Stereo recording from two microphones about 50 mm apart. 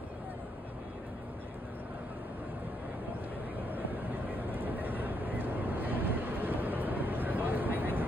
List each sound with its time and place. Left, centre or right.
3.7 s vehicle: right